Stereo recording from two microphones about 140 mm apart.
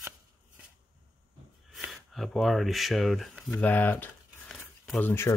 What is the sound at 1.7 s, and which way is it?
Speech, centre (ahead or behind).